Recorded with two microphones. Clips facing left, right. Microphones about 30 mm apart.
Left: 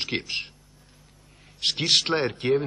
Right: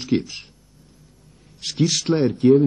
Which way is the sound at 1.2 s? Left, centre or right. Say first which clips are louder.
Right 2 dB; left.